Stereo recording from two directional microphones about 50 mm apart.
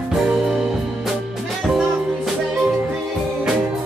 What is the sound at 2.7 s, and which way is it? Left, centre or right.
Music, right.